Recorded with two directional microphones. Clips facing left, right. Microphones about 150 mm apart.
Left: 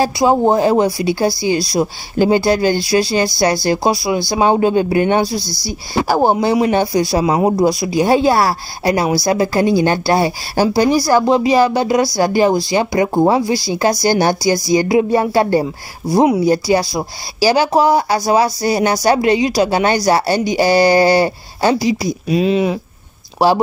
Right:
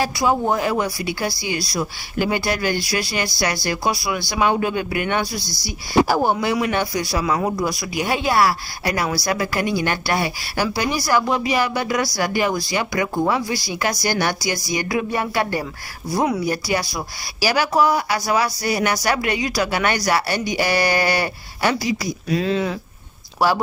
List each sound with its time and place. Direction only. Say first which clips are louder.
0.0 s speech: left 7 dB; 35° left (ahead or behind); by 22.8 s 15° left (ahead or behind)